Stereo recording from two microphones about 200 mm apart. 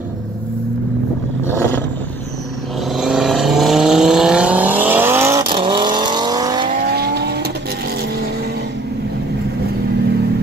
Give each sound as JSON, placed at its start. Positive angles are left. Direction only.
{"t": 1.5, "sound": "vehicle", "side_deg": 10}
{"t": 3.0, "sound": "vehicle", "side_deg": 0}
{"t": 6.7, "sound": "vehicle", "side_deg": -50}